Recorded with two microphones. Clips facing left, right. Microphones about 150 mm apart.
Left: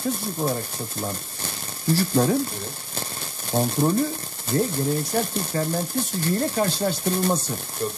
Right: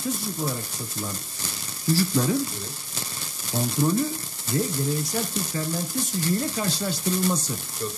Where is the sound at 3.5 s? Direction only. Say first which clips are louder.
Left 2 dB; 55° left (ahead or behind).